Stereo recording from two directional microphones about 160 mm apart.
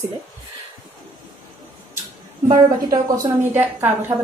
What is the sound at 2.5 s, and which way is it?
A woman's voice, 25° right (ahead or behind).